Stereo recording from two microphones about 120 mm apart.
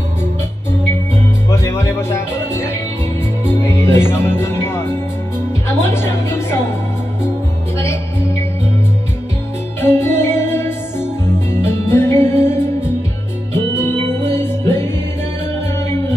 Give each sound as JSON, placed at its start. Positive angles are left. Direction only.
{"t": 1.5, "sound": "music", "side_deg": 25}
{"t": 5.9, "sound": "music", "side_deg": 20}
{"t": 7.7, "sound": "music", "side_deg": 25}
{"t": 9.8, "sound": "music", "side_deg": 20}